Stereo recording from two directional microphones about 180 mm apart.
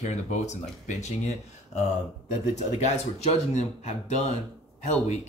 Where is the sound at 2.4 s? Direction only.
40° left (ahead or behind).